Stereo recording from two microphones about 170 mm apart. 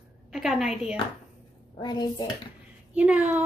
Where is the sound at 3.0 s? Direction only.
10° right (ahead or behind).